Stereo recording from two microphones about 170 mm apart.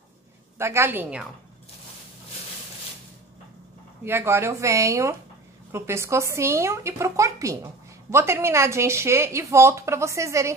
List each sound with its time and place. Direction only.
0.6 s speech: 15° right (ahead or behind)
4.0 s speech: 15° right (ahead or behind)